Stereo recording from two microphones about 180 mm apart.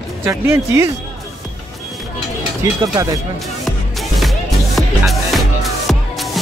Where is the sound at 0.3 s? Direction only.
15° right (ahead or behind).